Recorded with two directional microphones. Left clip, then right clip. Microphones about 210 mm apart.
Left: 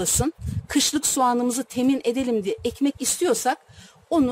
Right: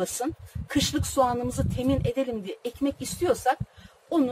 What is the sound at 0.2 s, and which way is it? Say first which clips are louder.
A woman's voice: left 4 dB; 55° left (ahead or behind).